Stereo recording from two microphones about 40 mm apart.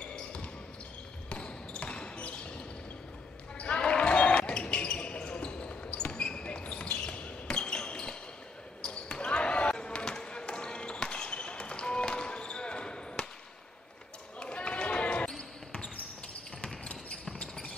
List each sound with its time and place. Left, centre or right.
0.1 s basketball bounce: left
14.4 s basketball bounce: left